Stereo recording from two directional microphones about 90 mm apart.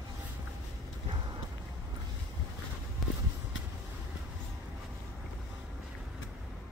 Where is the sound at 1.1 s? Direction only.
60° right (ahead or behind).